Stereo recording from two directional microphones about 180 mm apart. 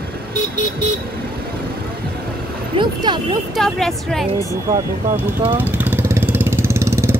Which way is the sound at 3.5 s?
Centre (ahead or behind).